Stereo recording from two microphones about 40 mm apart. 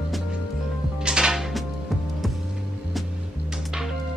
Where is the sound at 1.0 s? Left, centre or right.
Centre.